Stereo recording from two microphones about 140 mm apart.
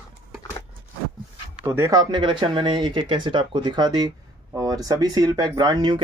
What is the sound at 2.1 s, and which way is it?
Speech, 35° right (ahead or behind).